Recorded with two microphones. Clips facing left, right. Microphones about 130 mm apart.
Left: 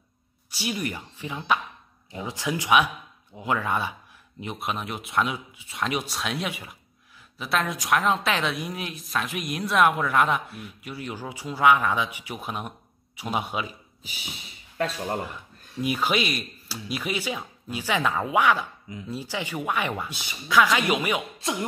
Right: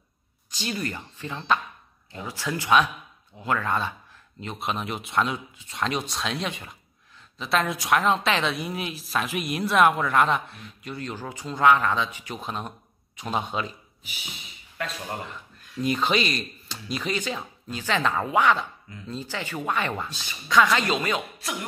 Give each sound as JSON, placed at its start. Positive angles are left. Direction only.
{"t": 0.5, "sound": "speech", "side_deg": 10}
{"t": 4.6, "sound": "a woman's voice", "side_deg": 0}
{"t": 14.8, "sound": "speech", "side_deg": 35}
{"t": 15.8, "sound": "speech", "side_deg": 10}